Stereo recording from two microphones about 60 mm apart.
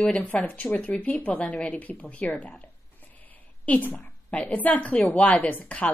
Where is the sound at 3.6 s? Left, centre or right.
Left.